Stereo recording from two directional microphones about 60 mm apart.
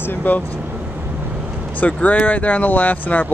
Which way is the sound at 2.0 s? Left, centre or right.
Left.